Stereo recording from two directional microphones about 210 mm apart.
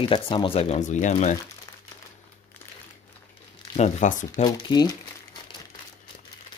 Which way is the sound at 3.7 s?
35° left (ahead or behind).